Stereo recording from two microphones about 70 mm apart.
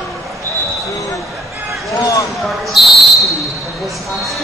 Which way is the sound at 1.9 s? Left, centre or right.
Left.